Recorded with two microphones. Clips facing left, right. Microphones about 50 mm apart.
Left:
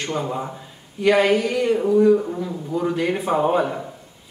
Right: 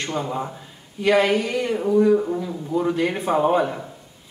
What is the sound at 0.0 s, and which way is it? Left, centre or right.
A man's voice, centre.